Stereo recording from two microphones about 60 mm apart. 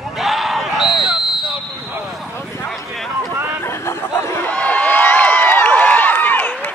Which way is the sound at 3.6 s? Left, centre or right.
Left.